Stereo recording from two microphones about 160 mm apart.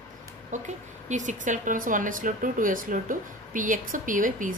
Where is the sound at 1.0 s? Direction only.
50° right (ahead or behind).